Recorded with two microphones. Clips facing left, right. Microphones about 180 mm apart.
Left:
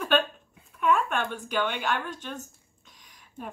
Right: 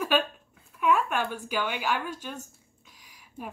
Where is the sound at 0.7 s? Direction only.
5° right (ahead or behind).